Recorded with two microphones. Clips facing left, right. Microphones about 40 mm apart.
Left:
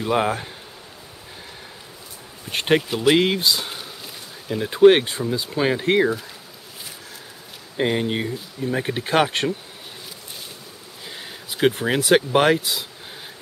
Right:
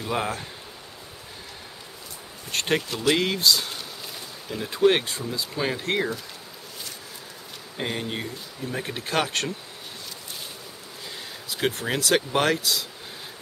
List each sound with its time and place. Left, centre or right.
0.0 s speech: left
2.5 s speech: centre
7.7 s speech: centre
11.5 s speech: centre